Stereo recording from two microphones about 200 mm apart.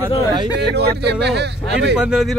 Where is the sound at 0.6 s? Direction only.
55° right (ahead or behind).